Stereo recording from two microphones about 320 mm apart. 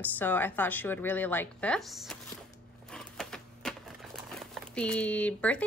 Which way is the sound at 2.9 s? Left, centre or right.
Centre.